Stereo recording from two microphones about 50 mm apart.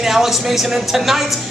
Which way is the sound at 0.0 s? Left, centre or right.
Centre.